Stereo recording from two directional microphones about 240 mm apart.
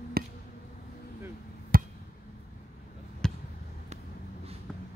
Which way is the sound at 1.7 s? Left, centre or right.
Right.